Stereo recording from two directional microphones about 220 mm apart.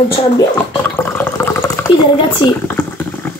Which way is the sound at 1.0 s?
10° left (ahead or behind).